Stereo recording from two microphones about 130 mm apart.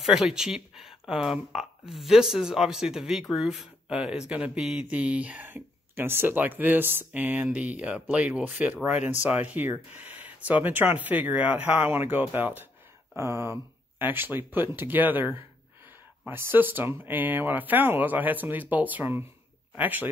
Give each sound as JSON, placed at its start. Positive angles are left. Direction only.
{"t": 0.0, "sound": "speech", "side_deg": -5}